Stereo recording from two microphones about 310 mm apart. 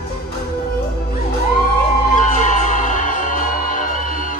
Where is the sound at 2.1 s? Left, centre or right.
Left.